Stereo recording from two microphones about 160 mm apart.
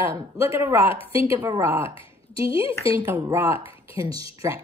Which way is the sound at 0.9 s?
35° left (ahead or behind).